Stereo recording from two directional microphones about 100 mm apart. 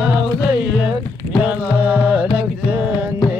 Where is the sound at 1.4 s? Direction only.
20° right (ahead or behind).